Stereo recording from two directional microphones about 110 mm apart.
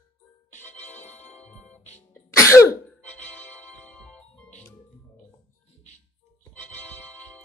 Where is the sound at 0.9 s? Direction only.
90° left.